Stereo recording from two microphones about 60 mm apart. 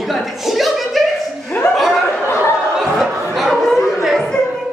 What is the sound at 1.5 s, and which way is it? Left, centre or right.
Chuckle, left.